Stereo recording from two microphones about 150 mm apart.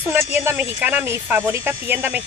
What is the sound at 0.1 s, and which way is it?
Speech, 15° right (ahead or behind).